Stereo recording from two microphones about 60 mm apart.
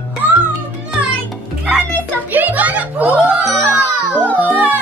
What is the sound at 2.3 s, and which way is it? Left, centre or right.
Music, right.